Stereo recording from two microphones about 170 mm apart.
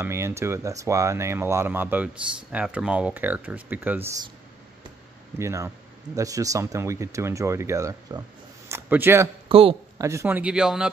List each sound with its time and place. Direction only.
0.0 s speech: 15° right (ahead or behind)
5.4 s speech: 20° right (ahead or behind)
9.5 s a man's voice: 35° right (ahead or behind)
9.9 s speech: 15° right (ahead or behind)